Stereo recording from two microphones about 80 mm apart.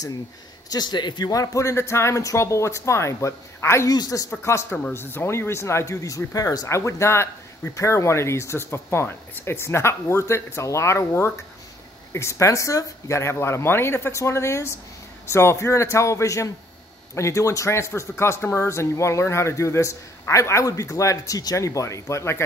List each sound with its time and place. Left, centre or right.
0.7 s a man's voice: left
1.3 s speech: left
3.9 s speech: left
4.3 s speech: left
6.7 s speech: left